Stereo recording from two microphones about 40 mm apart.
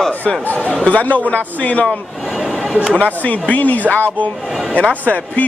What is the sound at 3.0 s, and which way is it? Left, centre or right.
Speech, left.